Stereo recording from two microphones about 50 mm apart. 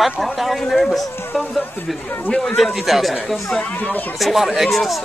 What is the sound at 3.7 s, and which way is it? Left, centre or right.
Speech, left.